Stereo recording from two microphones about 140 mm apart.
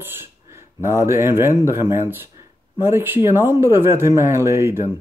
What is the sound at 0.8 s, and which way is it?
Speech, 20° right (ahead or behind).